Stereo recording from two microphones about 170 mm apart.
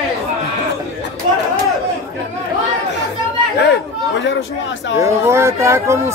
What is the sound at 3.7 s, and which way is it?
Chatter, 90° left.